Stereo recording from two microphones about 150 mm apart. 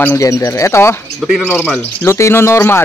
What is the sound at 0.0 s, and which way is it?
Speech, 20° left (ahead or behind).